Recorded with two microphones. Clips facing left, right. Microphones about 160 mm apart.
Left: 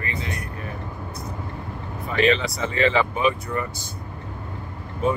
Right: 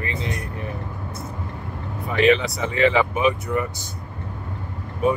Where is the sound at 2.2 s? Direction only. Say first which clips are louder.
Right 3 dB; 15° right (ahead or behind).